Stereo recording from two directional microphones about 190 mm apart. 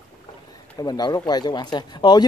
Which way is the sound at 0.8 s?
20° left (ahead or behind).